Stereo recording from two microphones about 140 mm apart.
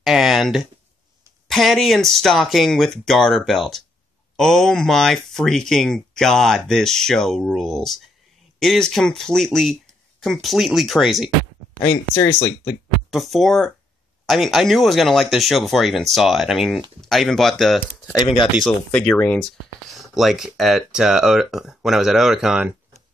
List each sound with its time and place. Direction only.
0.0 s speech: centre (ahead or behind)
11.8 s speech: 20° left (ahead or behind)
13.1 s speech: centre (ahead or behind)
20.0 s speech: centre (ahead or behind)